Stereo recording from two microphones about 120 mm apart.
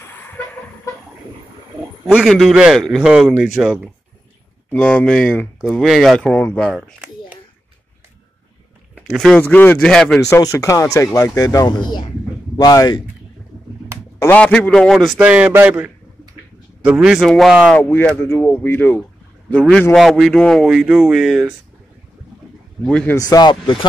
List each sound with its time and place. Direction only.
0.0 s chicken: 15° left (ahead or behind)
2.0 s a man's voice: 5° right (ahead or behind)
4.6 s a man's voice: 10° left (ahead or behind)
6.7 s speech: 10° right (ahead or behind)
9.1 s a man's voice: centre (ahead or behind)
9.4 s a man's voice: 15° left (ahead or behind)
10.3 s speech: 25° left (ahead or behind)
14.2 s a man's voice: 10° left (ahead or behind)
15.1 s a man's voice: 10° right (ahead or behind)
17.7 s a man's voice: 15° left (ahead or behind)
19.9 s a man's voice: centre (ahead or behind)
22.8 s a man's voice: 10° left (ahead or behind)
23.1 s speech: 35° left (ahead or behind)